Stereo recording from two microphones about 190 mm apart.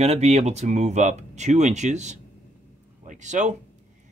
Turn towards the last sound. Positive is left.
turn(degrees=-40)  # may be behind; listen again after turning